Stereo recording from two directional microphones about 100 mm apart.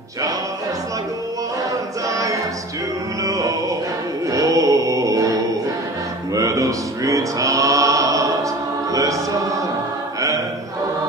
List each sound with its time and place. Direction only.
1.7 s chant: 35° right (ahead or behind)
3.3 s music: 35° right (ahead or behind)
4.3 s mantra: 35° right (ahead or behind)
6.3 s music: 35° right (ahead or behind)
8.9 s chant: 35° right (ahead or behind)